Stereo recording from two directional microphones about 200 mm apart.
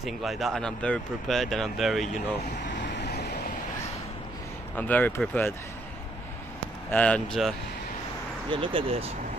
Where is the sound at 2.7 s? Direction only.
60° left (ahead or behind).